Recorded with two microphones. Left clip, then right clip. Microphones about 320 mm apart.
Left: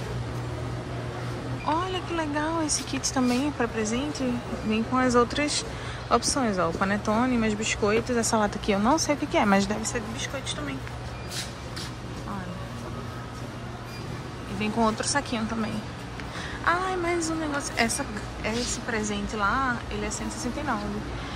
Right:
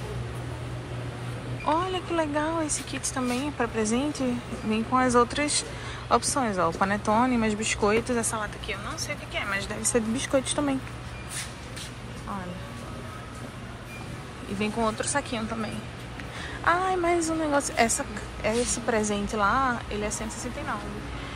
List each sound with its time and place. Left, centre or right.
1.7 s speech: centre
9.8 s speech: centre
14.6 s speech: centre
16.6 s speech: centre